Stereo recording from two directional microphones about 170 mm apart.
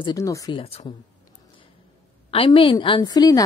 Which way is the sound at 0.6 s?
35° left (ahead or behind).